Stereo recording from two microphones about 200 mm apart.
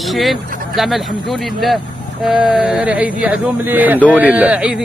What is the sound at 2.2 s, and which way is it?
Speech, centre (ahead or behind).